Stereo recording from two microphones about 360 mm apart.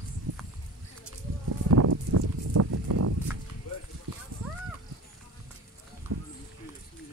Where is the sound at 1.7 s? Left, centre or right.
Right.